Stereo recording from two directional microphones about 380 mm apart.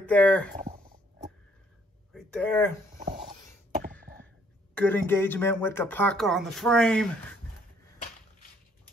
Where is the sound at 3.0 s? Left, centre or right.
Centre.